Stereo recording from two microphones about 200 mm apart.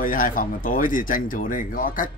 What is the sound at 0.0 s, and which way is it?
Speech, 40° left (ahead or behind).